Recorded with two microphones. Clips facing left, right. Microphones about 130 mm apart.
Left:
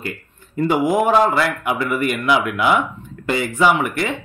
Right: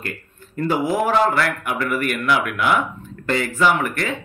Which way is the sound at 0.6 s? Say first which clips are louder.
Left 3 dB; 15° left (ahead or behind).